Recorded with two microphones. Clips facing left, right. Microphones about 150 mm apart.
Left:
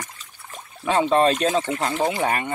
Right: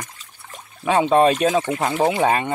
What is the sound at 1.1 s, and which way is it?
Speech, 15° right (ahead or behind).